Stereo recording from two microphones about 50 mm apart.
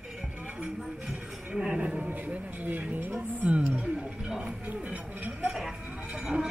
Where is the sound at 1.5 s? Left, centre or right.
Right.